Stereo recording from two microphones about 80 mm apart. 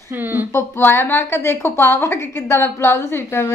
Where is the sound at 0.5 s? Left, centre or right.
Left.